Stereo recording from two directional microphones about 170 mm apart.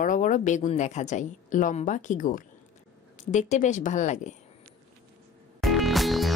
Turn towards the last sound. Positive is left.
turn(degrees=0)  # may be behind; listen again after turning